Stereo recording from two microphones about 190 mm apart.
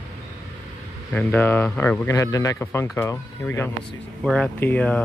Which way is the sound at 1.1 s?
10° left (ahead or behind).